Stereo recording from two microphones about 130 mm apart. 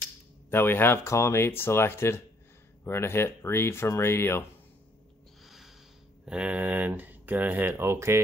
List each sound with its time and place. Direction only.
0.5 s speech: 15° left (ahead or behind)
5.4 s snort: centre (ahead or behind)
6.2 s speech: 10° right (ahead or behind)